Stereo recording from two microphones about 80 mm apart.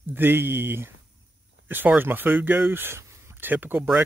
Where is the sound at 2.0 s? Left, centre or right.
Right.